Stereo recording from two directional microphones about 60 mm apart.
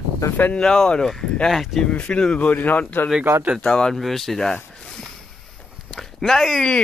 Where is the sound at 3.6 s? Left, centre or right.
Centre.